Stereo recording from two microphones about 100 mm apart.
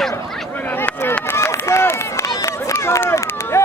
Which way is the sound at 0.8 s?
20° left (ahead or behind).